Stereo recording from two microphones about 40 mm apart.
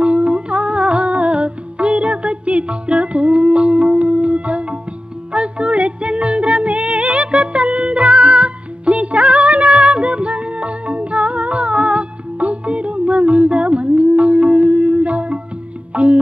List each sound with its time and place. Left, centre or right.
0.0 s music: right